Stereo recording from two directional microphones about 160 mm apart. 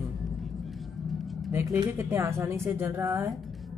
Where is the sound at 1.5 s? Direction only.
15° right (ahead or behind).